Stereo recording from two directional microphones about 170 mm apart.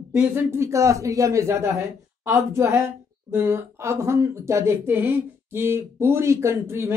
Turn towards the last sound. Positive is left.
turn(degrees=-15)  # may be behind; listen again after turning